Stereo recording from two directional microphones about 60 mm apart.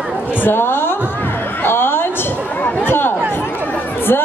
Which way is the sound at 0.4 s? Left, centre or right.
Left.